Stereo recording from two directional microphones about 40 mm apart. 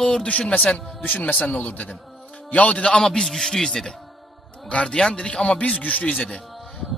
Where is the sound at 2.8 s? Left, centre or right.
Centre.